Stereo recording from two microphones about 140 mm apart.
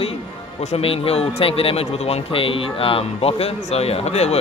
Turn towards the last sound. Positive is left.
turn(degrees=50)  # may be behind; listen again after turning